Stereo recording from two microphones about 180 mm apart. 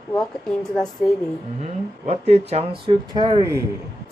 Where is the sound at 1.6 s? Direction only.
35° right (ahead or behind); by 3.6 s 15° right (ahead or behind).